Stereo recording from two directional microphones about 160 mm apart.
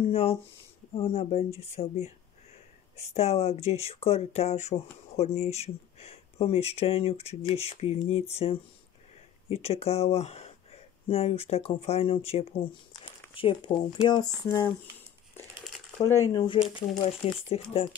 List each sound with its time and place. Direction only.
0.0 s speech: 35° left (ahead or behind)
12.9 s a sound: 35° left (ahead or behind)
14.0 s speech: 25° left (ahead or behind)
16.0 s speech: 20° left (ahead or behind); by 17.4 s 35° left (ahead or behind)